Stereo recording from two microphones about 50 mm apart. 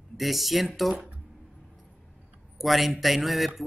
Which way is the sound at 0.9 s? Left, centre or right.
Right.